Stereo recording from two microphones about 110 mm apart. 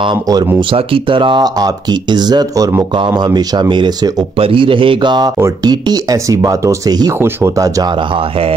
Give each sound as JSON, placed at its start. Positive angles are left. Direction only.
{"t": 0.0, "sound": "speech", "side_deg": -40}
{"t": 0.6, "sound": "speech", "side_deg": -50}
{"t": 7.2, "sound": "speech", "side_deg": -20}
{"t": 7.5, "sound": "speech", "side_deg": -30}